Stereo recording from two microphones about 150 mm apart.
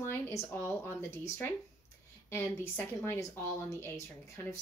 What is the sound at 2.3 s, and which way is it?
Speech, 15° left (ahead or behind).